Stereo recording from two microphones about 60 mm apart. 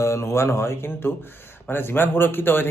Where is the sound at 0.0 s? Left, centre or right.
Left.